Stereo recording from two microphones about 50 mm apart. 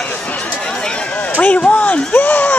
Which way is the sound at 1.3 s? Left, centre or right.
Left.